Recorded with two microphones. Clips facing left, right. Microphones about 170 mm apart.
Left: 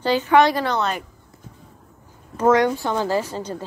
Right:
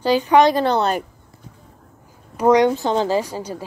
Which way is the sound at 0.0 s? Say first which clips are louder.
Right 2 dB; 15° right (ahead or behind).